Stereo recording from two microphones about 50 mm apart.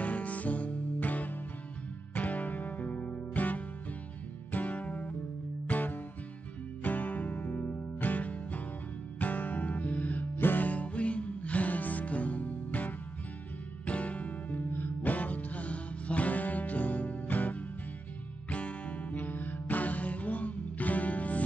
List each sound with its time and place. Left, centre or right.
0.0 s music: left